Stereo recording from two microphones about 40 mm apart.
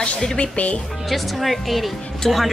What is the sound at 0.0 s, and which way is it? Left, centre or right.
Music, left.